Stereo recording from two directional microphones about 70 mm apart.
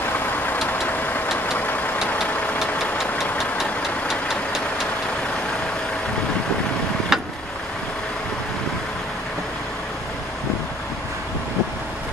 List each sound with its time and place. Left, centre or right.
0.7 s vehicle: left
3.0 s engine knocking: centre
4.1 s vehicle: centre
7.1 s vehicle: centre